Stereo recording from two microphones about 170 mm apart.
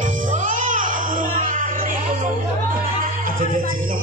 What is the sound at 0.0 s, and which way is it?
Music, 50° right (ahead or behind).